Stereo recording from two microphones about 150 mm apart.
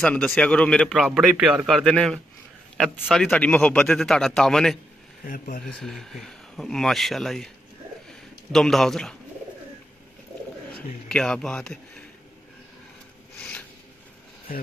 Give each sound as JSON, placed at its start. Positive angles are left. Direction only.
{"t": 0.0, "sound": "speech", "side_deg": 10}
{"t": 5.2, "sound": "speech", "side_deg": 70}
{"t": 5.6, "sound": "a man's voice", "side_deg": 5}
{"t": 11.1, "sound": "speech", "side_deg": 5}
{"t": 13.4, "sound": "zipper", "side_deg": 10}